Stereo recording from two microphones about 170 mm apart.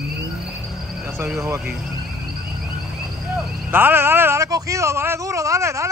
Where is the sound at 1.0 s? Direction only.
10° right (ahead or behind).